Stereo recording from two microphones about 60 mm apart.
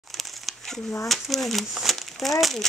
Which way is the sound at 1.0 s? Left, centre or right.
Centre.